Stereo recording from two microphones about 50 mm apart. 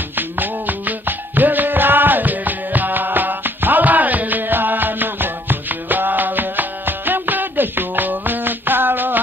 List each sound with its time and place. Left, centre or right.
0.1 s music: right